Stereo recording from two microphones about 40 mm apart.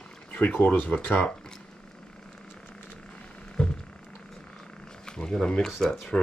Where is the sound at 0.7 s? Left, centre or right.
Left.